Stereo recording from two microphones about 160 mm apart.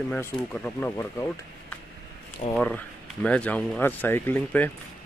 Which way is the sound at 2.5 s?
10° left (ahead or behind).